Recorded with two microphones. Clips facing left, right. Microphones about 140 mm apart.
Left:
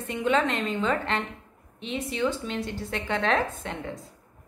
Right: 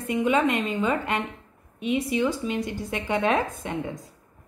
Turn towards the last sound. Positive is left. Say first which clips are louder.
# right 2 dB
turn(degrees=-10)  # may be behind; listen again after turning